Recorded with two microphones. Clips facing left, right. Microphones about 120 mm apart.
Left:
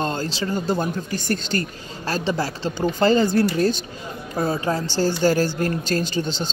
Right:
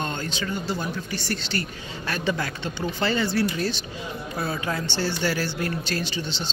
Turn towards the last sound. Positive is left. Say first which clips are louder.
# left 6 dB
turn(degrees=45)  # may be behind; listen again after turning